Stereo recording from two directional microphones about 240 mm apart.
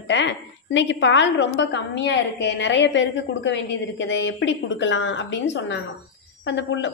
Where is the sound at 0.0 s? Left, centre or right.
Left.